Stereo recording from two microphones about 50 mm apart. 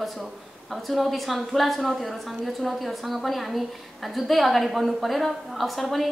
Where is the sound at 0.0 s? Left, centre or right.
Centre.